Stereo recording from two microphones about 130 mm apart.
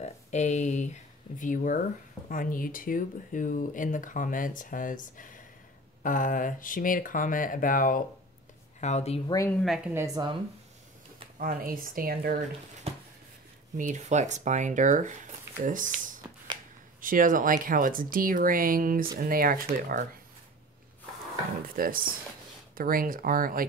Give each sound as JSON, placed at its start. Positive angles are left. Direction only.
{"t": 0.0, "sound": "speech", "side_deg": 60}
{"t": 1.4, "sound": "speech", "side_deg": 90}
{"t": 8.8, "sound": "speech", "side_deg": 55}
{"t": 9.5, "sound": "speech", "side_deg": 5}
{"t": 9.9, "sound": "speech", "side_deg": -30}
{"t": 11.3, "sound": "speech", "side_deg": -90}
{"t": 12.9, "sound": "a sound", "side_deg": -50}
{"t": 13.7, "sound": "speech", "side_deg": -70}
{"t": 21.6, "sound": "speech", "side_deg": -90}